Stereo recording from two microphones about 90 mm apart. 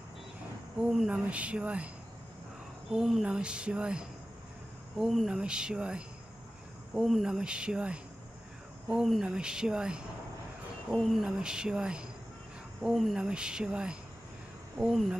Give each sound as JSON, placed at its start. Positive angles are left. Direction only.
{"t": 0.7, "sound": "speech", "side_deg": -10}
{"t": 2.9, "sound": "speech", "side_deg": -5}